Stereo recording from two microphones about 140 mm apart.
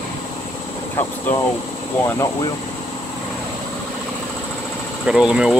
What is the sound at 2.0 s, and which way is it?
Speech, 20° left (ahead or behind).